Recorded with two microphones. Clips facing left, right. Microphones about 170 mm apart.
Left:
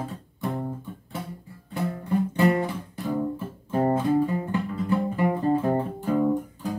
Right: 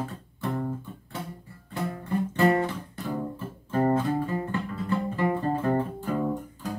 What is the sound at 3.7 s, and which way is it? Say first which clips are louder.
Music: left 2 dB; 15° left (ahead or behind).